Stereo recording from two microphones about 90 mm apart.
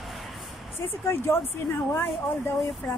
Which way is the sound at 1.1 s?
25° left (ahead or behind).